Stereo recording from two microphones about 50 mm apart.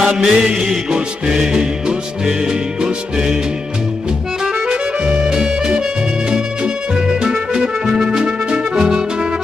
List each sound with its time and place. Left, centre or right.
0.0 s music: centre
4.6 s music: centre
7.2 s music: centre